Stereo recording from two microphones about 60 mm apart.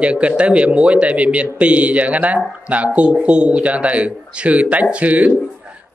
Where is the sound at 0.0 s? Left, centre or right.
Right.